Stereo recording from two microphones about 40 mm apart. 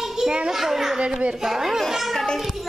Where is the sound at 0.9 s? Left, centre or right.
Right.